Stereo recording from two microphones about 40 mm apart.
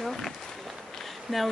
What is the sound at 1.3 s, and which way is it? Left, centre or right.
Speech, centre.